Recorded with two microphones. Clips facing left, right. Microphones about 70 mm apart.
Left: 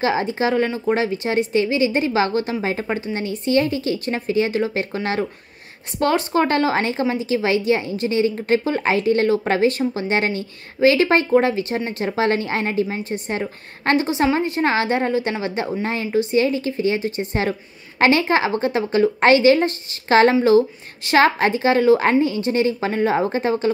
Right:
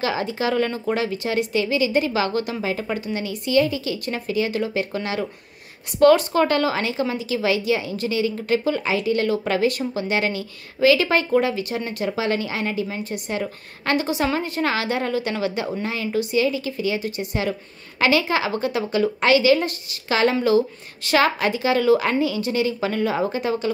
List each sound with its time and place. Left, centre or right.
0.0 s a woman's voice: left
5.9 s a woman's voice: left
12.8 s a woman's voice: left